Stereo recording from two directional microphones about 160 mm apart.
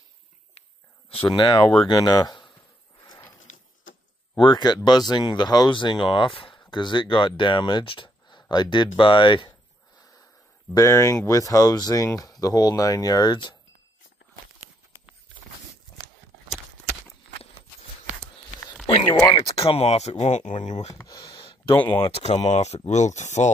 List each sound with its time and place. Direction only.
1.1 s speech: 30° left (ahead or behind)
3.0 s a sound: 25° left (ahead or behind)
4.4 s speech: 30° left (ahead or behind)
10.7 s speech: 20° left (ahead or behind)
19.3 s speech: 35° left (ahead or behind)
20.9 s a sound: 20° left (ahead or behind)
22.0 s speech: 40° left (ahead or behind)